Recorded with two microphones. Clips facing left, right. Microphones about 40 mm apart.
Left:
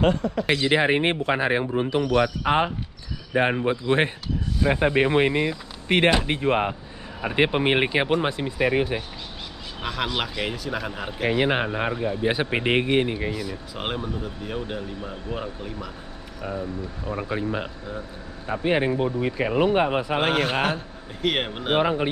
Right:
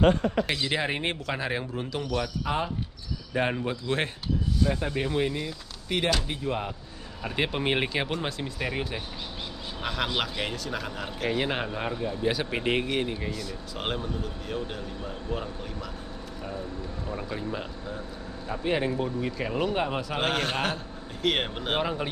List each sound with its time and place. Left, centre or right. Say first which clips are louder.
0.5 s speech: left 8 dB; left
3.3 s speech: left 6 dB; left
4.6 s speech: left 12 dB; left
7.2 s speech: left 7 dB; left
10.1 s speech: left 2 dB; centre; by 13.3 s left
13.3 s a man's voice: left 4 dB; centre
17.1 s speech: left 7 dB; left
20.2 s a man's voice: left 3 dB; centre